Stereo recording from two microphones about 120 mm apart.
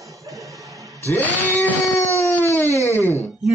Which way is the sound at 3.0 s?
25° right (ahead or behind).